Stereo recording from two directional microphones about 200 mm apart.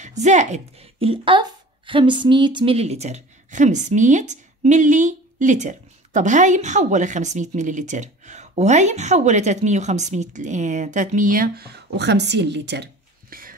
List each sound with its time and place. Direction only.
0.0 s speech: 35° right (ahead or behind)